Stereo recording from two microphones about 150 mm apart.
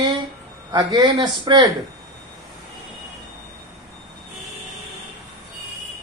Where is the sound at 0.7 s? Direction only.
30° right (ahead or behind).